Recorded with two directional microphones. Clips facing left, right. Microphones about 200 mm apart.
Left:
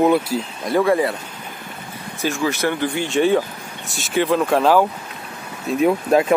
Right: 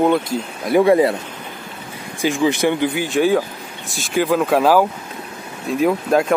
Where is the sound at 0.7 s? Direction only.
20° right (ahead or behind).